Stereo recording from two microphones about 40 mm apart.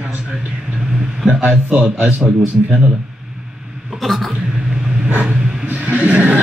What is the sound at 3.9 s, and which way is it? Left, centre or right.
Speech, centre.